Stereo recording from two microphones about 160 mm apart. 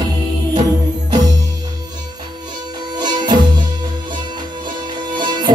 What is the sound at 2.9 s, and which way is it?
Music, 25° right (ahead or behind).